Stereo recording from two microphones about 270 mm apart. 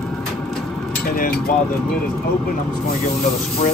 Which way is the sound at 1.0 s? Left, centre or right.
Left.